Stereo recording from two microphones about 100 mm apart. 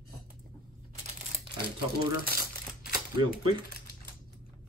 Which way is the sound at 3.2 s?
55° right (ahead or behind).